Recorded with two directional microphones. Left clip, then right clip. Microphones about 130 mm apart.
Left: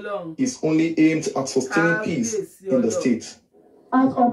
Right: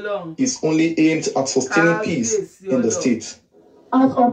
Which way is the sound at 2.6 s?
5° right (ahead or behind).